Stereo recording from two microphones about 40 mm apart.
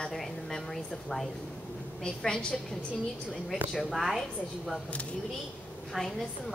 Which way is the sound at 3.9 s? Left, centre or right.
Centre.